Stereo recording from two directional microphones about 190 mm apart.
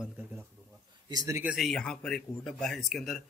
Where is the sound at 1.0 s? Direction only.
20° right (ahead or behind).